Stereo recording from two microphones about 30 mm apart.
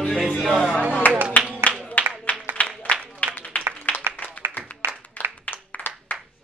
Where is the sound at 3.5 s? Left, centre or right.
Left.